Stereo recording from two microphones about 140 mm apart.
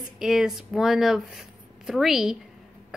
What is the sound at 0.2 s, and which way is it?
Speech, 5° right (ahead or behind).